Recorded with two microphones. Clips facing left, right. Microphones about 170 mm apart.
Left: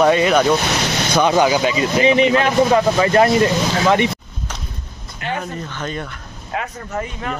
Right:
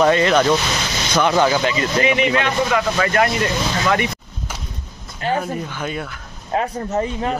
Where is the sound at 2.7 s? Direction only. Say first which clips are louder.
Left 4 dB; 30° left (ahead or behind).